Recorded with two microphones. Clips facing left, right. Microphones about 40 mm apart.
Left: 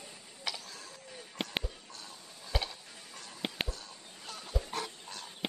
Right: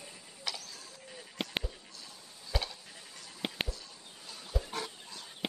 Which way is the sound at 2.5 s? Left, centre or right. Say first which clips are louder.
Left 1 dB; centre.